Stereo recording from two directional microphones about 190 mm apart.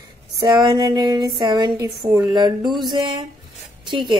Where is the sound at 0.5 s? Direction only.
20° right (ahead or behind).